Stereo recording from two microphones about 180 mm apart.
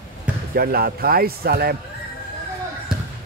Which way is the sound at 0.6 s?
55° right (ahead or behind).